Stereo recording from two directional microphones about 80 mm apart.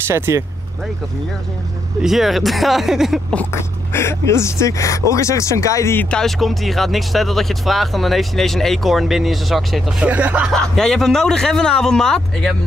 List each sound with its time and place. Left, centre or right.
0.1 s speech: right
2.0 s speech: centre
3.5 s speech: left
6.0 s speech: centre
9.9 s speech: centre
10.8 s a man's voice: centre